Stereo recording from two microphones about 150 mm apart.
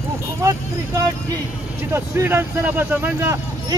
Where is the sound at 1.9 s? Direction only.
15° right (ahead or behind).